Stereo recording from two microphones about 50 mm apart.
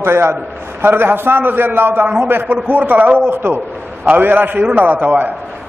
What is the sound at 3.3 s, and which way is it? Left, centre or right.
Speech, right.